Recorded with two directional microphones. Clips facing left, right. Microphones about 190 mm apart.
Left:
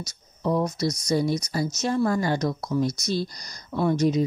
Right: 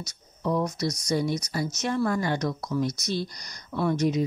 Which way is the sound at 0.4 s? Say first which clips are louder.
Left 2 dB; 35° left (ahead or behind).